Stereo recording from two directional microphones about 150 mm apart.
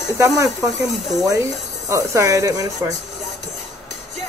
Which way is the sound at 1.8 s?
20° right (ahead or behind).